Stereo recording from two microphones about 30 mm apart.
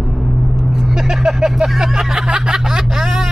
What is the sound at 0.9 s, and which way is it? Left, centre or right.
Speech, right.